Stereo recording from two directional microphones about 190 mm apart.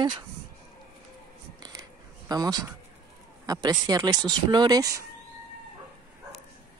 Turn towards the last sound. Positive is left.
turn(degrees=-20)  # may be behind; listen again after turning